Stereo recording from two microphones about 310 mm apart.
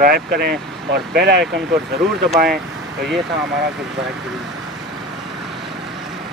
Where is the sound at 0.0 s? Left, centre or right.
Right.